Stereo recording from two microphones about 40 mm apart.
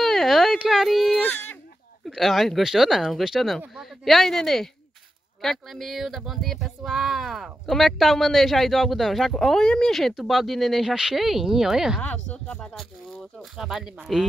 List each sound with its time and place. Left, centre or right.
0.0 s a sound: centre
0.8 s speech: centre
2.6 s speech: centre
5.7 s speech: centre
7.6 s speech: centre
10.1 s speech: centre
12.0 s speech: left
12.7 s speech: centre